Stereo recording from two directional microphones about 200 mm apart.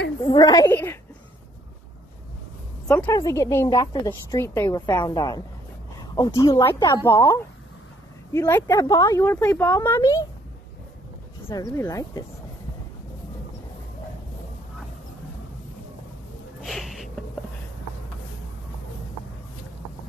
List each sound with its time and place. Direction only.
0.2 s speech: 20° left (ahead or behind)
3.1 s a woman's voice: 15° left (ahead or behind)
8.3 s speech: 15° left (ahead or behind)
11.4 s speech: 15° left (ahead or behind)
16.6 s a sound: centre (ahead or behind)